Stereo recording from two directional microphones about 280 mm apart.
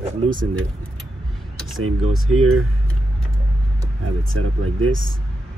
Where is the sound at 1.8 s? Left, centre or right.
Right.